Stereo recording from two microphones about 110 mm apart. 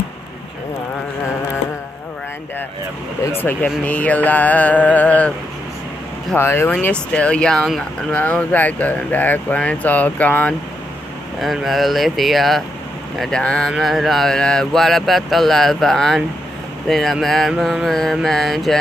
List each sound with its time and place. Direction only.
3.3 s speech: 15° left (ahead or behind)
6.3 s speech: 20° left (ahead or behind)
11.3 s mantra: centre (ahead or behind)